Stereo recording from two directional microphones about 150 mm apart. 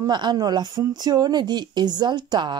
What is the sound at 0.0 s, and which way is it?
Speech, 30° right (ahead or behind).